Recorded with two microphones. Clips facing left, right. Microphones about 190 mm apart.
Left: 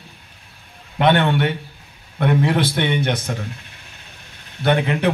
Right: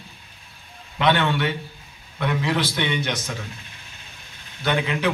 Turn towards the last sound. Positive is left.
turn(degrees=50)  # may be behind; listen again after turning